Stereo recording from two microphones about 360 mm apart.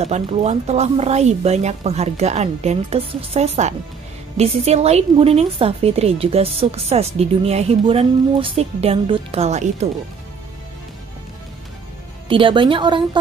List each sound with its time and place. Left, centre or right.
0.0 s a woman's voice: centre
12.3 s a woman's voice: centre